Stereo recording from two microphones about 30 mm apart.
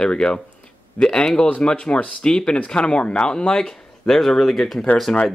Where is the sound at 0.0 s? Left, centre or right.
Left.